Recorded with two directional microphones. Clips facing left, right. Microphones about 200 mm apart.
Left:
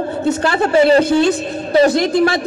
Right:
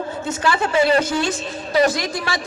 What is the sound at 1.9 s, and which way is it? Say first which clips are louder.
Speech: left 11 dB; 60° left (ahead or behind).